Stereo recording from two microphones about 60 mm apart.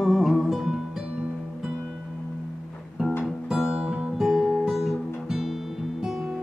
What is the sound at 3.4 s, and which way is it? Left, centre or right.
Music, centre.